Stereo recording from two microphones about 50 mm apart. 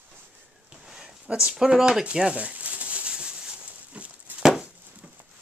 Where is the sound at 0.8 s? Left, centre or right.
Centre.